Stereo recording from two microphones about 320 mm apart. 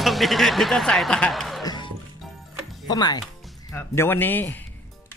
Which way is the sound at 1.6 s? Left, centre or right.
Centre.